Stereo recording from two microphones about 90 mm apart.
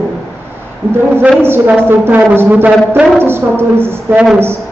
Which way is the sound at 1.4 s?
25° right (ahead or behind).